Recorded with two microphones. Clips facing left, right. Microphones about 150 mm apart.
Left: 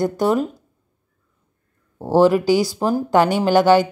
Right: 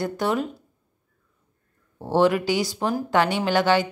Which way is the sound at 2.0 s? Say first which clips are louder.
Left 5 dB; 40° left (ahead or behind).